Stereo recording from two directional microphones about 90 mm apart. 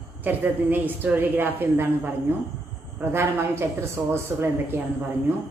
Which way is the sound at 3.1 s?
25° right (ahead or behind).